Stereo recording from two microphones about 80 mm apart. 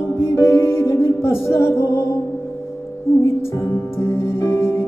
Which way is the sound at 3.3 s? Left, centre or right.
Left.